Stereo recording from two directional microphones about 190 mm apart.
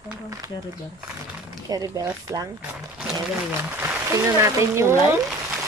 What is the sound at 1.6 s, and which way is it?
Speech, 20° right (ahead or behind).